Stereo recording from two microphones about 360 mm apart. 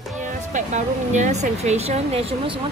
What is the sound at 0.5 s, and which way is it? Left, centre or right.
Speech, centre.